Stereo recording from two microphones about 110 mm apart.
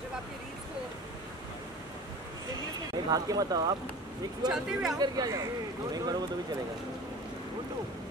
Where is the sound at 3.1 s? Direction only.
35° right (ahead or behind).